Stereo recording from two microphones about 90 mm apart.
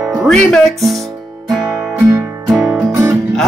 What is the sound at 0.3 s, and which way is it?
Music, 5° left (ahead or behind).